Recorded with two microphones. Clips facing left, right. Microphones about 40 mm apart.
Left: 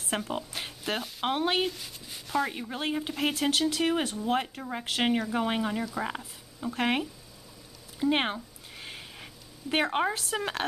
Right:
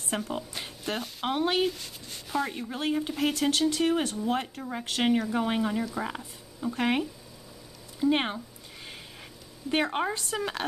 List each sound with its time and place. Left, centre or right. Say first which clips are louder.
0.1 s speech: even; centre
1.7 s speech: right 2 dB; centre
9.7 s speech: left 1 dB; centre